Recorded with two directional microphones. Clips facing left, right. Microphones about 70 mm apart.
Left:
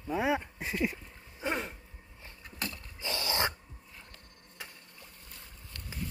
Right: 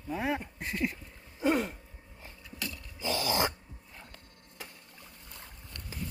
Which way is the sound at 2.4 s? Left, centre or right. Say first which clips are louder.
Left 1 dB; left.